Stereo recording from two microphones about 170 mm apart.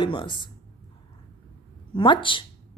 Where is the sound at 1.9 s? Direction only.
30° left (ahead or behind).